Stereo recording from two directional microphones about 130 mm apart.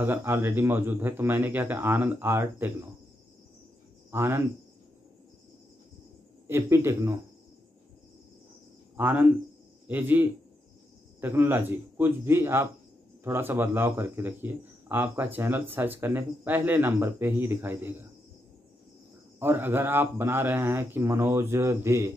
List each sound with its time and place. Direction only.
0.0 s speech: 15° right (ahead or behind)
4.1 s speech: 15° right (ahead or behind)
6.4 s a man's voice: 20° right (ahead or behind)
8.9 s speech: 15° right (ahead or behind)
19.4 s speech: 15° right (ahead or behind)